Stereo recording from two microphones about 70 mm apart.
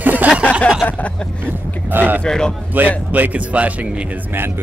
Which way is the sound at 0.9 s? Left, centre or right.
Left.